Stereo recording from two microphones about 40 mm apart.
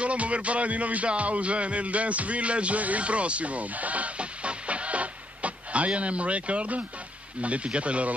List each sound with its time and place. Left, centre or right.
0.0 s music: right
7.4 s speech: right